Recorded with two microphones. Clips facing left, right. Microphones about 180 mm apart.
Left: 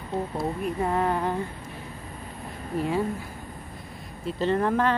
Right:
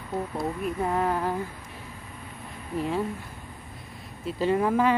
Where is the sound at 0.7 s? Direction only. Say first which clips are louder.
Left 1 dB; centre (ahead or behind).